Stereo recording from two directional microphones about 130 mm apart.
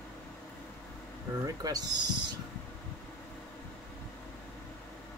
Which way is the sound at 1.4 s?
30° right (ahead or behind).